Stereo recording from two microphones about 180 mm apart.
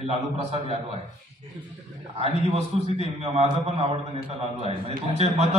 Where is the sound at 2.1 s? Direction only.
35° right (ahead or behind).